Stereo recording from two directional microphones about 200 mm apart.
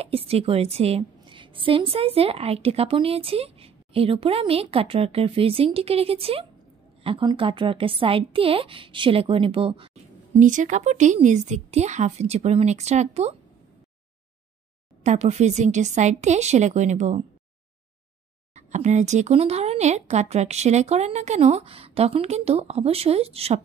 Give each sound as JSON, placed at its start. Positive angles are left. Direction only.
{"t": 0.0, "sound": "a woman's voice", "side_deg": -30}
{"t": 10.4, "sound": "speech", "side_deg": -40}
{"t": 15.0, "sound": "speech", "side_deg": -35}
{"t": 18.5, "sound": "speech", "side_deg": -35}